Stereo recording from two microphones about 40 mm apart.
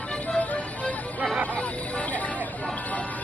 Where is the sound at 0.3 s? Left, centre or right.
Left.